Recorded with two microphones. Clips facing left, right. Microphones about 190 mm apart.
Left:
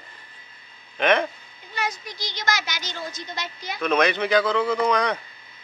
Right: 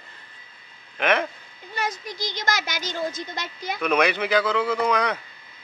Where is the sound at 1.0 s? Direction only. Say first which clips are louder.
Left 2 dB; 5° right (ahead or behind).